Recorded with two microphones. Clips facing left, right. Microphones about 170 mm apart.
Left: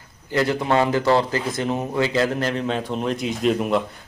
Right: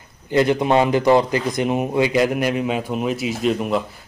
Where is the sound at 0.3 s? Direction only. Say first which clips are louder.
Right 4 dB; 20° right (ahead or behind).